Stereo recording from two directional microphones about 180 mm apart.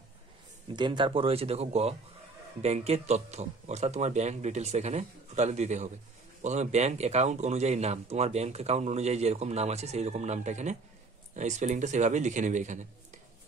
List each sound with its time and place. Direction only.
0.7 s speech: 25° right (ahead or behind); by 12.8 s 40° right (ahead or behind)